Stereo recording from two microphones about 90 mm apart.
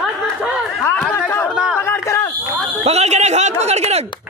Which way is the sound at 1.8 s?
30° left (ahead or behind).